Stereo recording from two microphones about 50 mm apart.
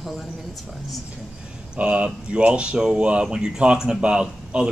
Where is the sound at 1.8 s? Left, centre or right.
Right.